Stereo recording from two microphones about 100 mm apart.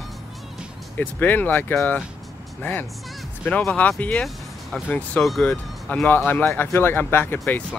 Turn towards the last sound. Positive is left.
turn(degrees=20)  # may be behind; listen again after turning